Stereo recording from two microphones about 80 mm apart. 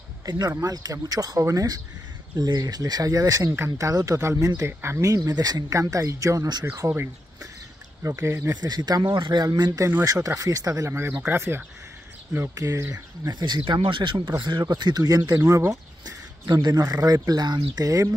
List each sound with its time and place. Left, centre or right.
0.2 s speech: right
1.4 s speech: right
5.1 s speech: right
8.0 s speech: right
8.5 s speech: right
10.2 s speech: right
10.9 s speech: right
12.5 s speech: right
13.3 s speech: right
14.4 s speech: right
17.8 s speech: right